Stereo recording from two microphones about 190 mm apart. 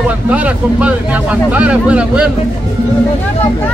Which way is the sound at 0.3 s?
5° right (ahead or behind).